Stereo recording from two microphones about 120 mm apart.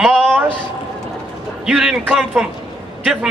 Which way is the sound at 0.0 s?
Centre (ahead or behind).